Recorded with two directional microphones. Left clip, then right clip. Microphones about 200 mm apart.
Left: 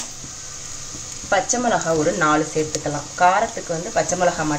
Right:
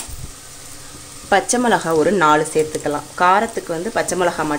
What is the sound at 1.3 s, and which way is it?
Speech, 45° right (ahead or behind).